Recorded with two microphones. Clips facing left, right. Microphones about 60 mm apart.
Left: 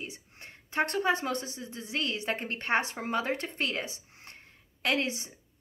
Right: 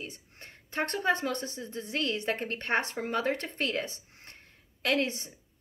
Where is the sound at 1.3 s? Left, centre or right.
Right.